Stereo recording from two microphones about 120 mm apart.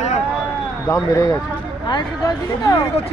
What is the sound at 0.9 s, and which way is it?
A man's voice, 25° left (ahead or behind).